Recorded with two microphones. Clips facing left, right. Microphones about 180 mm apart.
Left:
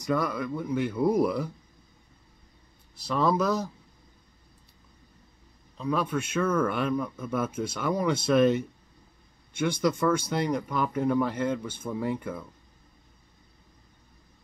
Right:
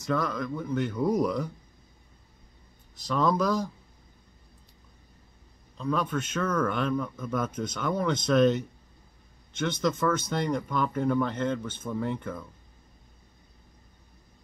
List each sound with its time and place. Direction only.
0.0 s speech: 10° left (ahead or behind)
3.1 s speech: 5° left (ahead or behind)
5.8 s speech: 5° left (ahead or behind)